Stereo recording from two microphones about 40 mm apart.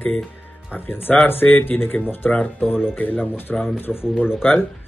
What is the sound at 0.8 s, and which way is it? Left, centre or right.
Music, left.